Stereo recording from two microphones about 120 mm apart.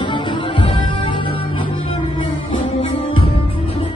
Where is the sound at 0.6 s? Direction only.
45° left (ahead or behind).